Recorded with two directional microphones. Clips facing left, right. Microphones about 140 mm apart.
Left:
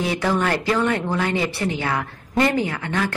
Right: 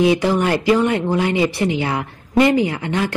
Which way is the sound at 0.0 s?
15° right (ahead or behind).